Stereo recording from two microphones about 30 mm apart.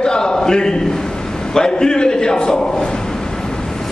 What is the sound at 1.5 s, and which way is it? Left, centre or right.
A man's voice, left.